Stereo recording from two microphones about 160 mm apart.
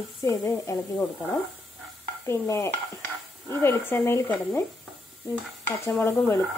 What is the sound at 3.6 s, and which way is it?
A woman's voice, 15° left (ahead or behind).